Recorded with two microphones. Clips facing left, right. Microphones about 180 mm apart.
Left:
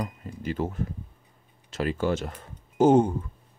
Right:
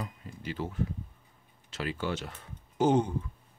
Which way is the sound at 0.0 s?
45° left (ahead or behind).